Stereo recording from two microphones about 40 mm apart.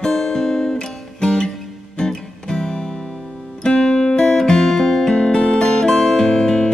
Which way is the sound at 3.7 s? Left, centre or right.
Left.